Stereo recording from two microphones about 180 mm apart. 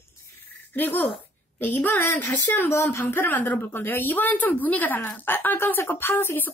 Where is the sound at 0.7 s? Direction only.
10° left (ahead or behind).